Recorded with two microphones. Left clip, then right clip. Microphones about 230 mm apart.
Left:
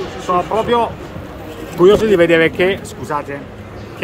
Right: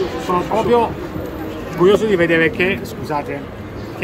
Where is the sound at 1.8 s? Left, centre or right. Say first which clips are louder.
Left 3 dB; left.